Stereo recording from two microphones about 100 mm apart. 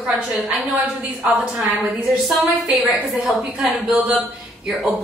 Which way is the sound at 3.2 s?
5° right (ahead or behind).